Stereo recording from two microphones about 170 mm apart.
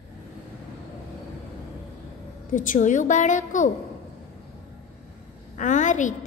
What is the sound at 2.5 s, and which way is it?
A woman's voice, 50° left (ahead or behind).